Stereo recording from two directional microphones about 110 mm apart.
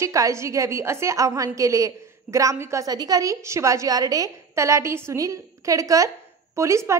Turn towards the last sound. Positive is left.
turn(degrees=-25)  # may be behind; listen again after turning